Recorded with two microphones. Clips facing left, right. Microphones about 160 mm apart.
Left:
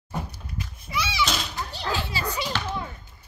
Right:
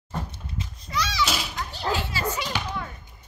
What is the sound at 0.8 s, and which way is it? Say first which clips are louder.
Children playing: even; 5° right (ahead or behind).